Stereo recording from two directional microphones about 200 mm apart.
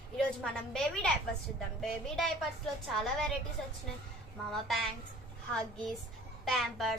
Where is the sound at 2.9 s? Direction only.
Centre (ahead or behind).